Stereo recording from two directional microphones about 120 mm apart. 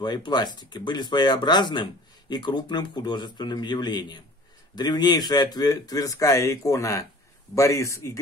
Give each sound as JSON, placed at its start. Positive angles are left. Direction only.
{"t": 0.0, "sound": "speech", "side_deg": 35}